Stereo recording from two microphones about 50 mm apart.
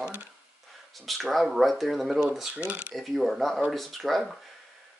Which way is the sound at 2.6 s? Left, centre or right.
Right.